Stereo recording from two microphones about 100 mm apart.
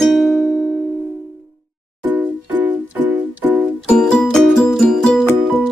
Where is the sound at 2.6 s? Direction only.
15° right (ahead or behind).